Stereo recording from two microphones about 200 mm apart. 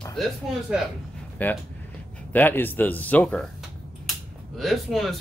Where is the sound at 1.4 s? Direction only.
10° left (ahead or behind).